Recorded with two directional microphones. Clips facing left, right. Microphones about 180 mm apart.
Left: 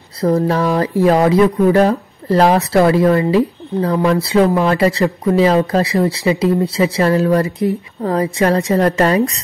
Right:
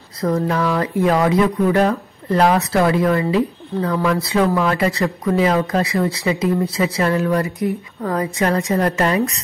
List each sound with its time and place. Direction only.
0.2 s speech: 35° left (ahead or behind)